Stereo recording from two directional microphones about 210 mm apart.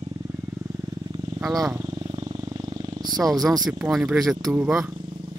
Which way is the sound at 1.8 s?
20° right (ahead or behind).